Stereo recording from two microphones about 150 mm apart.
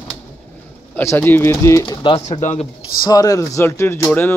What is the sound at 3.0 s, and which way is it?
Speech, 25° left (ahead or behind).